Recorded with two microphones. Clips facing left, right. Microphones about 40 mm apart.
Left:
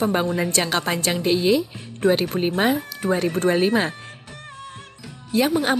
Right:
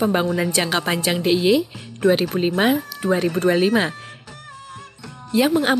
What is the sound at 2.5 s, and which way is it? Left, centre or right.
Speech, right.